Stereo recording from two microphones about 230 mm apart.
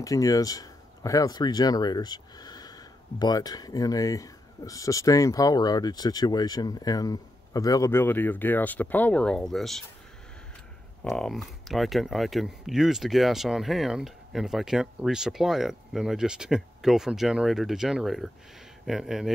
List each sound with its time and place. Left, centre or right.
0.0 s speech: centre
11.1 s speech: centre